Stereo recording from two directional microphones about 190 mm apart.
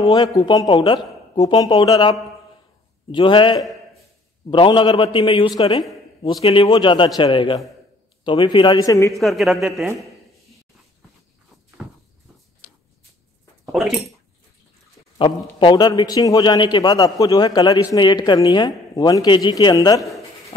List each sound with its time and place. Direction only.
0.0 s a man's voice: 20° left (ahead or behind)
9.1 s a man's voice: centre (ahead or behind)
13.7 s speech: centre (ahead or behind)
15.1 s a man's voice: 25° left (ahead or behind)